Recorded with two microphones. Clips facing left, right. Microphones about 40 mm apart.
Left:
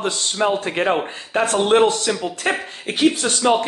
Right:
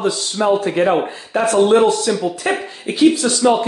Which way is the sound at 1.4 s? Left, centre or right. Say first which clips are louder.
Right 3 dB; left.